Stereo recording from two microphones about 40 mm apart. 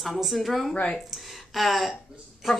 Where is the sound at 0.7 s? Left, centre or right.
Left.